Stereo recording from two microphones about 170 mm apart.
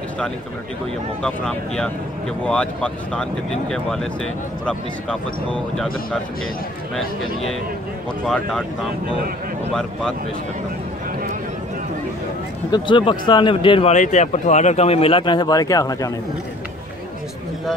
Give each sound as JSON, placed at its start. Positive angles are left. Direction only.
{"t": 1.2, "sound": "speech", "side_deg": 5}
{"t": 12.7, "sound": "speech", "side_deg": 30}
{"t": 13.9, "sound": "speech", "side_deg": 45}